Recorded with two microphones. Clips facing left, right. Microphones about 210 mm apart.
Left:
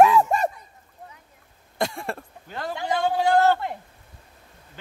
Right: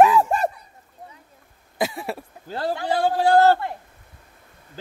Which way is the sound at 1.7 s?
5° right (ahead or behind).